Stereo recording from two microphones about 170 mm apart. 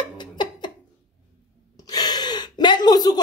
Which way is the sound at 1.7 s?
20° left (ahead or behind).